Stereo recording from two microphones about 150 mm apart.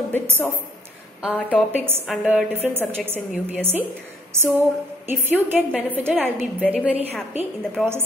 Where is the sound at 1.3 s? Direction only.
10° left (ahead or behind).